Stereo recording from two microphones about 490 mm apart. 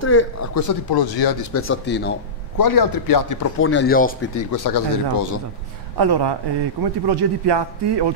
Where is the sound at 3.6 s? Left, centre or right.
Left.